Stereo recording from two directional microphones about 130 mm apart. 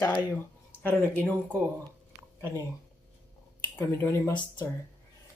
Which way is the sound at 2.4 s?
20° right (ahead or behind).